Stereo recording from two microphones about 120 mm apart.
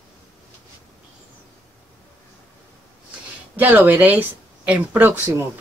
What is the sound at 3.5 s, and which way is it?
Speech, 15° right (ahead or behind).